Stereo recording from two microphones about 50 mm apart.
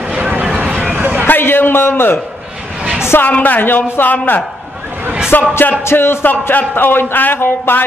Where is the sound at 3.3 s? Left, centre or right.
Left.